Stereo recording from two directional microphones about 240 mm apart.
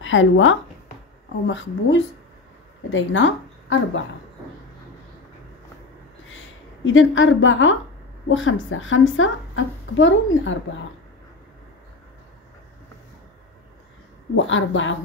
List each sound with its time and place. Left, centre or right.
0.0 s a woman's voice: left
6.3 s a woman's voice: left
14.3 s a woman's voice: left